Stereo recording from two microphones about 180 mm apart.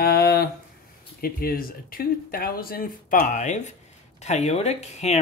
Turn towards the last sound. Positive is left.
turn(degrees=40)  # may be behind; listen again after turning